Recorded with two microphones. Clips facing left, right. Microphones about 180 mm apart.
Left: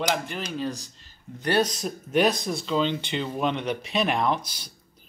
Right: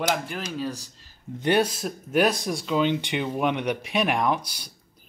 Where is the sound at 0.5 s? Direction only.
5° right (ahead or behind).